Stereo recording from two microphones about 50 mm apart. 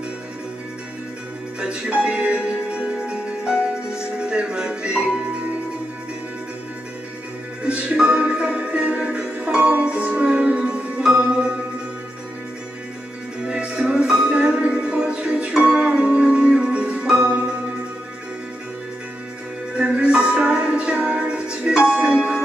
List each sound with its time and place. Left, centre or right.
1.6 s music: right
7.6 s music: right
13.5 s music: centre
19.8 s music: right